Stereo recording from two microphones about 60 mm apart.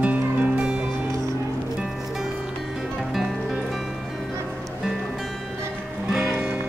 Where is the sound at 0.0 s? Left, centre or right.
Centre.